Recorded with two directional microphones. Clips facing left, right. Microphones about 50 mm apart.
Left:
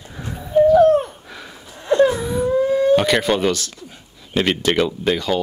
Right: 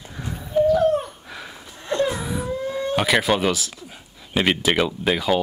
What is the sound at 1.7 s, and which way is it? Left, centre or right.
Wail, centre.